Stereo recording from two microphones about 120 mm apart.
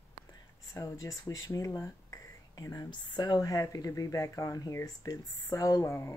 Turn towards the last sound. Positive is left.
turn(degrees=25)  # may be behind; listen again after turning